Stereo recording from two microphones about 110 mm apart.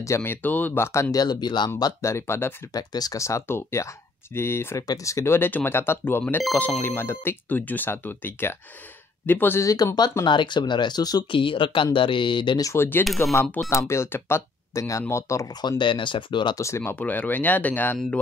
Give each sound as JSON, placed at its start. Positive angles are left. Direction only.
{"t": 0.0, "sound": "speech", "side_deg": 25}
{"t": 1.1, "sound": "speech", "side_deg": 35}
{"t": 2.7, "sound": "speech", "side_deg": 35}
{"t": 9.7, "sound": "speech", "side_deg": 35}
{"t": 11.3, "sound": "speech", "side_deg": 50}
{"t": 12.6, "sound": "speech", "side_deg": 20}
{"t": 15.8, "sound": "speech", "side_deg": 45}
{"t": 16.5, "sound": "speech", "side_deg": 25}
{"t": 17.0, "sound": "speech", "side_deg": 15}